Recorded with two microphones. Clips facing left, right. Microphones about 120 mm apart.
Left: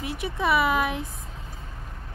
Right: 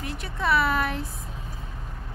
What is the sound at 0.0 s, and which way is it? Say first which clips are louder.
Speech: left 2 dB; 10° left (ahead or behind).